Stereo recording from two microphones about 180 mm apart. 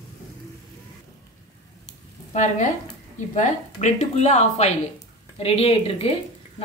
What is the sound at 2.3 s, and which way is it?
A woman's voice, 40° left (ahead or behind).